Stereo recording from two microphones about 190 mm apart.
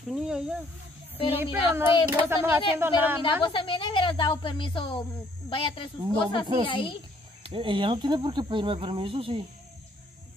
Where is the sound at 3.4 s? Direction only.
25° left (ahead or behind).